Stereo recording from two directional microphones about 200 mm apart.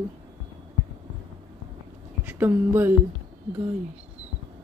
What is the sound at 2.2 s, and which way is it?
Speech, 10° right (ahead or behind).